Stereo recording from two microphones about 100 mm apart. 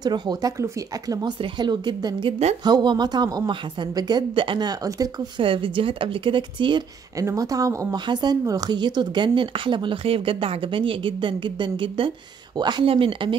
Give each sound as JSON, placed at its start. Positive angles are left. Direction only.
{"t": 0.0, "sound": "speech", "side_deg": -45}
{"t": 1.4, "sound": "a woman's voice", "side_deg": -50}
{"t": 2.2, "sound": "a woman's voice", "side_deg": -90}
{"t": 2.6, "sound": "a woman's voice", "side_deg": -45}
{"t": 5.4, "sound": "a woman's voice", "side_deg": -60}
{"t": 7.2, "sound": "speech", "side_deg": -35}
{"t": 8.1, "sound": "a woman's voice", "side_deg": -45}
{"t": 12.8, "sound": "a woman's voice", "side_deg": -65}